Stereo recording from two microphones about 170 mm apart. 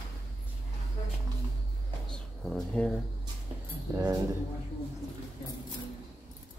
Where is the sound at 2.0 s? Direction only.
5° left (ahead or behind).